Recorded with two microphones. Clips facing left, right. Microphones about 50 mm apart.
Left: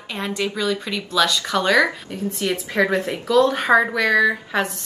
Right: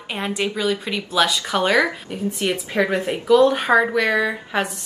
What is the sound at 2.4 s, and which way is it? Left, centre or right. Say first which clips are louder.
A woman's voice: left 1 dB; right.